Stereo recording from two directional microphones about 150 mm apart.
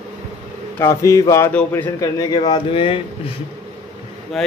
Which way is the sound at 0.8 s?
20° left (ahead or behind).